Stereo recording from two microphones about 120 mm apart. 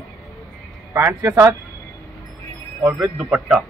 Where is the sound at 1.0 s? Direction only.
20° right (ahead or behind).